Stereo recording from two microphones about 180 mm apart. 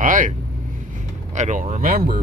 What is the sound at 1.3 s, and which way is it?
Speech, 45° right (ahead or behind).